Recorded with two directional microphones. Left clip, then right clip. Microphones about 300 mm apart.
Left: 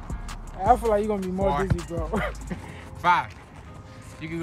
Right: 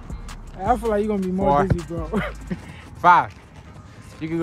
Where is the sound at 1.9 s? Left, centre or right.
Left.